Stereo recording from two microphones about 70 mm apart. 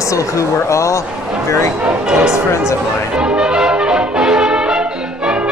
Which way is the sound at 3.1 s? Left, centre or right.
Centre.